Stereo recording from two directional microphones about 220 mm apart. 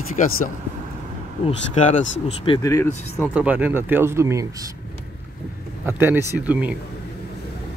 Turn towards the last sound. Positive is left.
turn(degrees=-5)  # may be behind; listen again after turning